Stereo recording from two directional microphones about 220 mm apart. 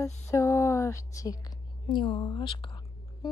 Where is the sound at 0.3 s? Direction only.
15° left (ahead or behind).